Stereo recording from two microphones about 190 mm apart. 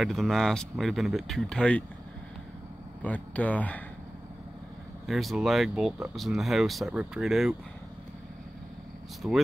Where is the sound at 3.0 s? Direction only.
10° left (ahead or behind).